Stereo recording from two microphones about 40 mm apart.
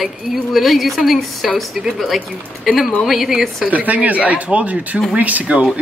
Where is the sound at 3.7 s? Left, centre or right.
Right.